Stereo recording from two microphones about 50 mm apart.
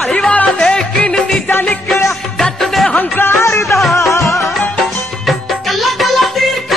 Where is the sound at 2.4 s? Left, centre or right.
Centre.